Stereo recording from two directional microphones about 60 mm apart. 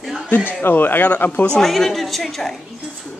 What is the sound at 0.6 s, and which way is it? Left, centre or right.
Speech, left.